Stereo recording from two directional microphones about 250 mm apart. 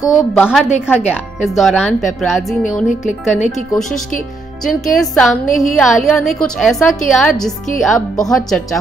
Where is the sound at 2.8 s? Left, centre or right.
Left.